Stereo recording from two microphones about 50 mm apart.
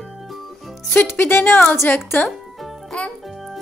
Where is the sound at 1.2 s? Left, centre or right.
Left.